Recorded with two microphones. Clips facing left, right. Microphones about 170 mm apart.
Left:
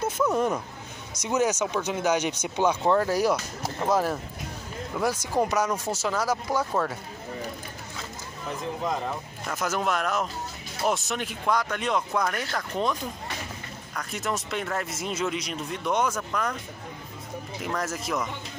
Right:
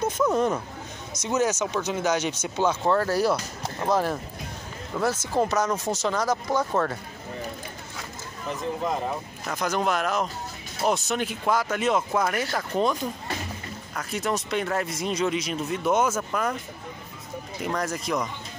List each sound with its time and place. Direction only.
0.3 s speech: 10° left (ahead or behind)
8.8 s speech: 5° right (ahead or behind)
13.9 s speech: centre (ahead or behind)
17.6 s speech: centre (ahead or behind)